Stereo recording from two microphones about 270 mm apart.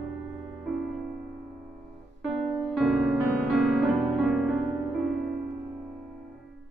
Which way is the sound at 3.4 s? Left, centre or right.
Centre.